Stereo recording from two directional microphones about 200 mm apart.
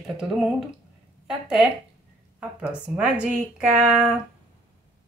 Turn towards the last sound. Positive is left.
turn(degrees=-5)  # may be behind; listen again after turning